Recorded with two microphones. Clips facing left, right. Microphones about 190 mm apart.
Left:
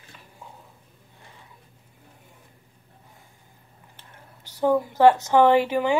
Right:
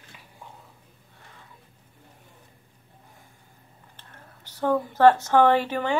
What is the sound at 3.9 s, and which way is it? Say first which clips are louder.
Speech: even; 15° left (ahead or behind).